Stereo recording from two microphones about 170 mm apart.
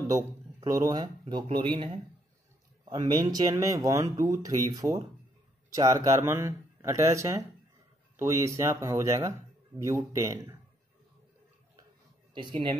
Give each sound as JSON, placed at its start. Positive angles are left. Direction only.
{"t": 0.0, "sound": "speech", "side_deg": -20}